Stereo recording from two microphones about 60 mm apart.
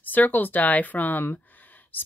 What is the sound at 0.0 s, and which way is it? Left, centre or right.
Speech, left.